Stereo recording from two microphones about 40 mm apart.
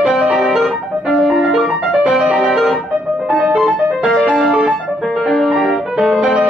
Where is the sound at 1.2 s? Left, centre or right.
Centre.